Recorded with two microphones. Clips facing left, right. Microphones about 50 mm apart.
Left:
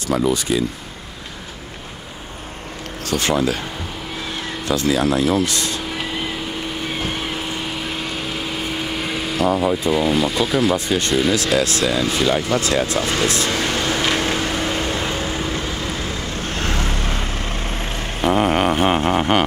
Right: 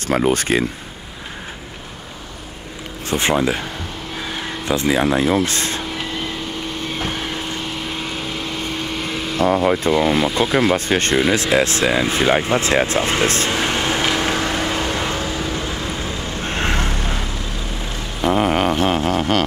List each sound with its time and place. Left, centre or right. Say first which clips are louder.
0.1 s speech: right 2 dB; right
3.1 s speech: right 1 dB; right
4.6 s speech: right 1 dB; right
5.9 s vehicle: even; centre
10.0 s speech: right 1 dB; centre
10.4 s speech: right 3 dB; right
10.9 s speech: right 2 dB; right
11.3 s vehicle: right 2 dB; right
15.2 s vehicle: even; left
16.4 s vehicle: right 3 dB; right
17.2 s vehicle: left 2 dB; left
18.2 s a sound: even; centre
18.9 s a sound: left 1 dB; centre